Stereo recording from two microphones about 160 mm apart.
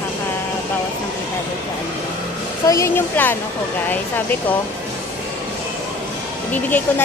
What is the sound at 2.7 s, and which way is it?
Speech, 15° left (ahead or behind).